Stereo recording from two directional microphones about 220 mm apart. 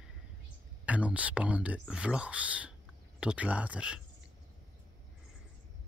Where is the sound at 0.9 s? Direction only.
5° right (ahead or behind).